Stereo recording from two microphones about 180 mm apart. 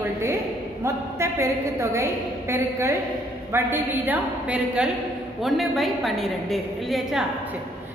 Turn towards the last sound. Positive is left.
turn(degrees=0)  # may be behind; listen again after turning